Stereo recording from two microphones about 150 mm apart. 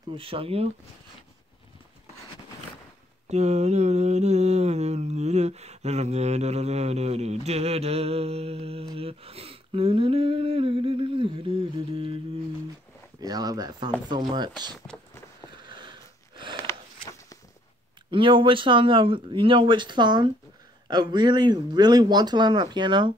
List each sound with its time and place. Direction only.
0.1 s speech: 35° right (ahead or behind)
3.3 s mantra: 50° right (ahead or behind)
8.9 s speech: 40° right (ahead or behind)
13.2 s speech: 25° right (ahead or behind)
15.5 s a sound: 30° right (ahead or behind)
18.1 s speech: 35° right (ahead or behind)